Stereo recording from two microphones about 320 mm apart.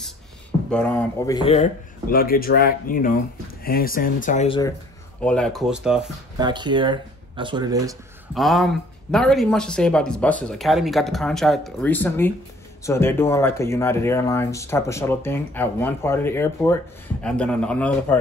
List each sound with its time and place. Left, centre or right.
0.7 s speech: centre
5.2 s speech: centre
6.4 s speech: centre
8.4 s speech: centre